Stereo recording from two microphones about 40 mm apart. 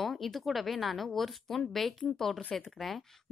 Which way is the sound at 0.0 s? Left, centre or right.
Centre.